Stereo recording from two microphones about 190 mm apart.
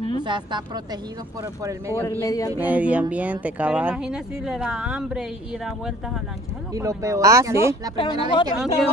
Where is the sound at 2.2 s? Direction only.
20° left (ahead or behind).